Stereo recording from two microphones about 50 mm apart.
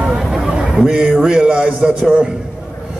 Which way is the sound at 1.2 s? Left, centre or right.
Centre.